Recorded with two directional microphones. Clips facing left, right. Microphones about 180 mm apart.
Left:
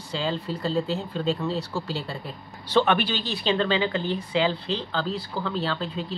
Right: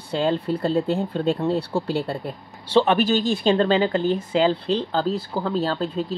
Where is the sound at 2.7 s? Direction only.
35° right (ahead or behind).